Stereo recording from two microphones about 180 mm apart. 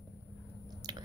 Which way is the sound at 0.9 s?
25° right (ahead or behind).